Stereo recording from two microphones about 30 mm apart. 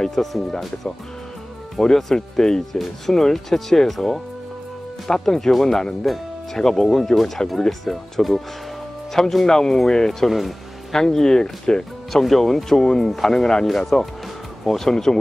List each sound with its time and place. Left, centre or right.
0.0 s speech: centre
1.8 s speech: centre
2.7 s speech: centre
5.1 s speech: left
5.5 s speech: centre
6.6 s speech: centre
9.2 s speech: left
10.2 s speech: centre
10.9 s speech: centre
12.1 s speech: centre